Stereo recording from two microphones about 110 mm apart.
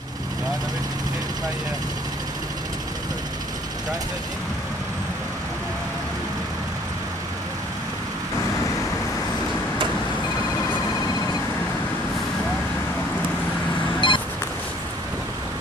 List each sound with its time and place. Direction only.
14.0 s vehicle: 45° left (ahead or behind)